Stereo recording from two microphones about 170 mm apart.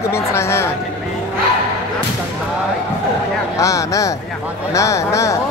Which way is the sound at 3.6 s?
20° left (ahead or behind).